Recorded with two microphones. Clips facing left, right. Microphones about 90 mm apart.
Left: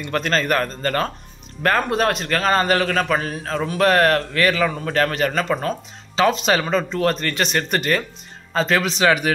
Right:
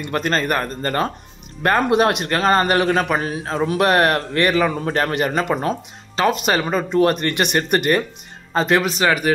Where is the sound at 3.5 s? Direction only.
30° right (ahead or behind).